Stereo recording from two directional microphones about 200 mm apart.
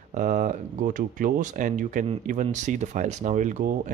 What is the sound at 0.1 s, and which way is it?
Speech, 35° right (ahead or behind).